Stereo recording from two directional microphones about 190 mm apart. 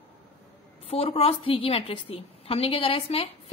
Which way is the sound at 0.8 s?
30° left (ahead or behind).